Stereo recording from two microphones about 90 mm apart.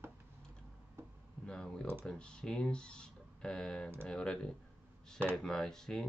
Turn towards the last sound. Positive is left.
turn(degrees=5)  # may be behind; listen again after turning